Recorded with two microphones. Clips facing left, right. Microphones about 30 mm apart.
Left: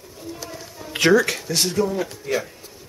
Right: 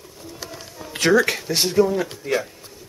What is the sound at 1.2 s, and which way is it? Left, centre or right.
Speech, centre.